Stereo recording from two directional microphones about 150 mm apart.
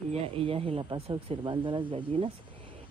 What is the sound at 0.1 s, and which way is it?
Speech, 40° right (ahead or behind).